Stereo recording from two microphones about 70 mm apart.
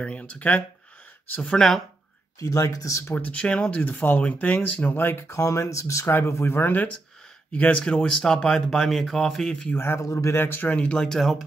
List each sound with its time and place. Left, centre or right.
0.0 s speech: centre
1.5 s speech: centre
2.4 s speech: left
3.2 s speech: centre
3.8 s speech: left
4.9 s speech: left
6.0 s speech: left
7.8 s speech: centre
9.7 s speech: left; by 11.4 s centre